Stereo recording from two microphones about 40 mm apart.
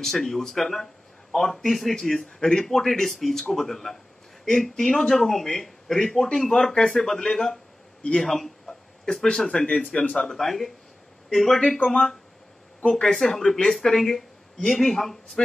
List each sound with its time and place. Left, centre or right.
0.0 s speech: centre
1.6 s speech: centre
6.5 s speech: centre
8.6 s a sound: centre
10.1 s speech: centre